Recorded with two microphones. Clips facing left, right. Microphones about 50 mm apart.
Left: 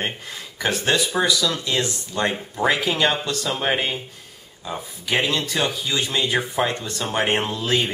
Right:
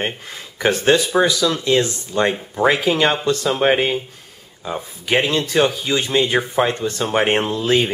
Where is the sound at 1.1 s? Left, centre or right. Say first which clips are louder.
Right 4 dB; centre.